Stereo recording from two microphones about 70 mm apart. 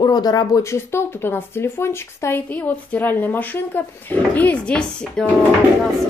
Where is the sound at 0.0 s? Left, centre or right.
Left.